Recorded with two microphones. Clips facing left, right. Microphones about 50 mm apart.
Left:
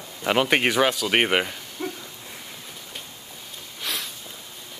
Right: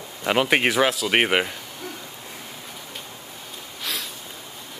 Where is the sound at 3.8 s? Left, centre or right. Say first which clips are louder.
Even; centre.